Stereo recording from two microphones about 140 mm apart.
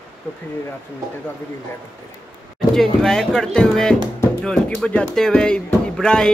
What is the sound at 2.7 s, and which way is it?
Speech, 5° left (ahead or behind).